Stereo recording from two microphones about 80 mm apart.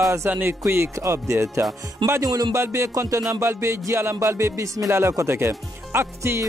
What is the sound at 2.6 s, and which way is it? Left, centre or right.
Speech, right.